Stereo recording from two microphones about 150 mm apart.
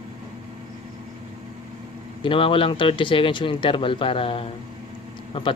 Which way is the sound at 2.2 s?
35° left (ahead or behind).